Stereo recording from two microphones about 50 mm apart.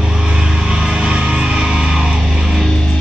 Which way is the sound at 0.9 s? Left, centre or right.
Centre.